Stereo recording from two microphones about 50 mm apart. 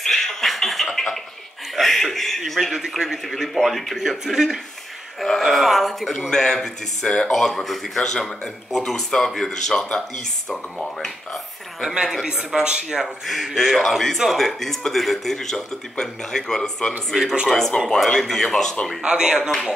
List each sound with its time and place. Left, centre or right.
0.0 s a sound: centre
1.8 s a man's voice: centre
5.4 s a man's voice: centre
11.8 s speech: centre
13.3 s a man's voice: centre
17.1 s a man's voice: centre
19.0 s speech: centre